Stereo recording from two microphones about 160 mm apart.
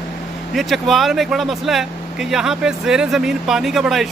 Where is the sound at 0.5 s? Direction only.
Centre (ahead or behind).